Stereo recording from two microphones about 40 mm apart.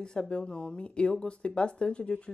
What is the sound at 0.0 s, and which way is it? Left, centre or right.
Speech, left.